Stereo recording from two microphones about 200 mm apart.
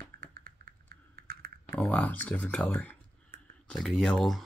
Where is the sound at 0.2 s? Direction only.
45° right (ahead or behind).